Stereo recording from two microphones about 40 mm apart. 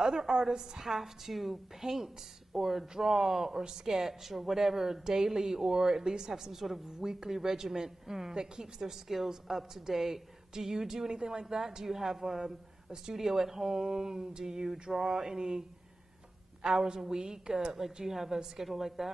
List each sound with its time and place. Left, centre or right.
0.0 s a woman's voice: centre
16.6 s a woman's voice: centre
17.9 s a woman's voice: centre